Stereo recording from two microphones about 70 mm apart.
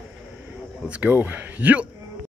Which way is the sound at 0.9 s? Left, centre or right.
Right.